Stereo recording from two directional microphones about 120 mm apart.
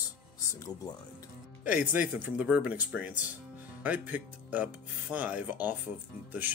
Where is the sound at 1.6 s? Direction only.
15° right (ahead or behind).